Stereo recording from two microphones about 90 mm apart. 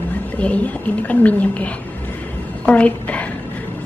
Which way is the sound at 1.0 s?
15° left (ahead or behind).